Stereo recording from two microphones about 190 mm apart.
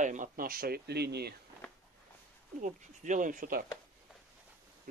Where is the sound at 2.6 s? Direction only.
40° right (ahead or behind).